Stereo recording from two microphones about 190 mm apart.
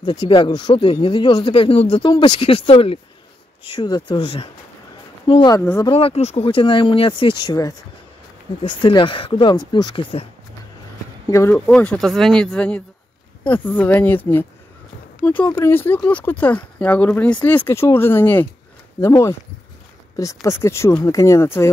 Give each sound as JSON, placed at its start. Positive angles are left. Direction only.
{"t": 0.0, "sound": "speech", "side_deg": 25}
{"t": 5.6, "sound": "speech", "side_deg": 10}
{"t": 5.9, "sound": "speech", "side_deg": 30}
{"t": 11.2, "sound": "speech", "side_deg": 15}
{"t": 11.5, "sound": "speech", "side_deg": 5}